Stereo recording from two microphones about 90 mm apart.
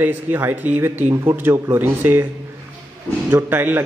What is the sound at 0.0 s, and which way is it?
A man's voice, 25° right (ahead or behind).